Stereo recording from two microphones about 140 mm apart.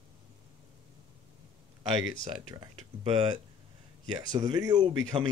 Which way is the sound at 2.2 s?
35° right (ahead or behind).